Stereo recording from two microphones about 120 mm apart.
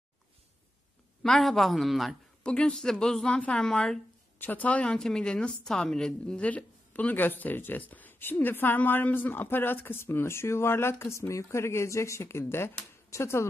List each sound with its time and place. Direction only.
1.2 s speech: 5° left (ahead or behind); by 13.5 s 25° left (ahead or behind)